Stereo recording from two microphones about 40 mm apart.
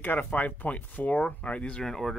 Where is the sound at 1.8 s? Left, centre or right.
Centre.